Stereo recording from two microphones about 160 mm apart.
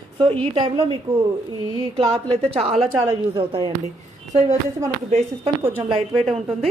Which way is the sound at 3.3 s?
30° right (ahead or behind).